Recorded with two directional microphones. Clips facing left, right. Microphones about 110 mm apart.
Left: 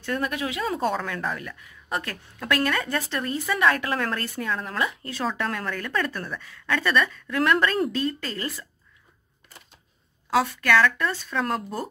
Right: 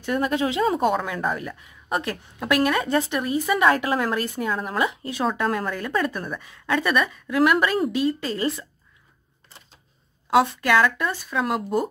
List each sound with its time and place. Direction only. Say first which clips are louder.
0.0 s a woman's voice: right 4 dB; 15° right (ahead or behind)
0.3 s speech: right 6 dB; 25° right (ahead or behind)
0.8 s a woman's voice: right 4 dB; 15° right (ahead or behind)
10.3 s a woman's voice: right 3 dB; 20° right (ahead or behind)